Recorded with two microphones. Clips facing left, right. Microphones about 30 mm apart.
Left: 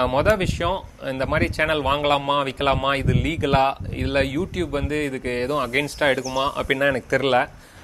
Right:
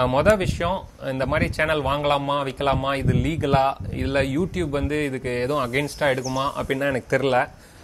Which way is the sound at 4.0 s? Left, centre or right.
Left.